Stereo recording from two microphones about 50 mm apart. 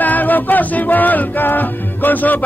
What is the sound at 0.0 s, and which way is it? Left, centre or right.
A capella, left.